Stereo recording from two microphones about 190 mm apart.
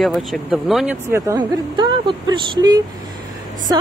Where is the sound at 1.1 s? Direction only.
20° right (ahead or behind).